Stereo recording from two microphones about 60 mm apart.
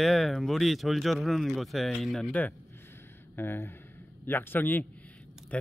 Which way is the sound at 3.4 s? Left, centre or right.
Left.